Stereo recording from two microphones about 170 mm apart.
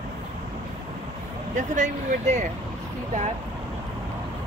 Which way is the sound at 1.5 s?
45° right (ahead or behind).